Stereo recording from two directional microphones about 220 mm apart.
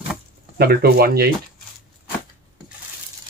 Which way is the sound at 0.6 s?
45° right (ahead or behind).